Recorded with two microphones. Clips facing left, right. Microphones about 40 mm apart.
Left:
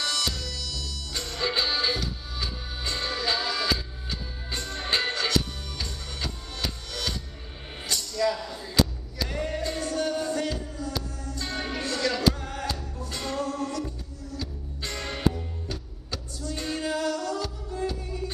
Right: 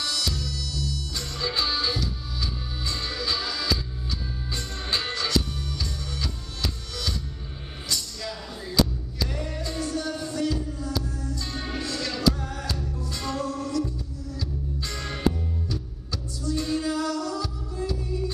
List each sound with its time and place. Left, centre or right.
0.0 s music: left
9.3 s music: left